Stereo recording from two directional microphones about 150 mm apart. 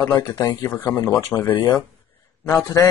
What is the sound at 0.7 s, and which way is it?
A man's voice, 15° left (ahead or behind).